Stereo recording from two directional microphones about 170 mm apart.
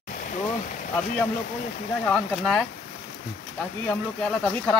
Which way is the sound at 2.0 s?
Centre (ahead or behind).